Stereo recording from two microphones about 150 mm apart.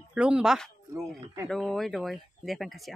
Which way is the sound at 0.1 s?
5° right (ahead or behind).